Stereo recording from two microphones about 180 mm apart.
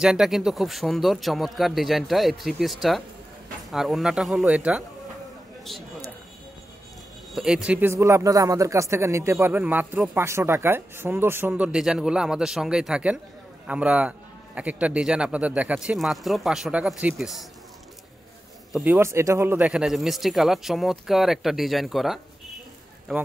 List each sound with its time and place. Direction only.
0.0 s speech: 5° right (ahead or behind)
7.3 s speech: 5° right (ahead or behind)
18.7 s speech: centre (ahead or behind)
18.9 s speech: 15° right (ahead or behind)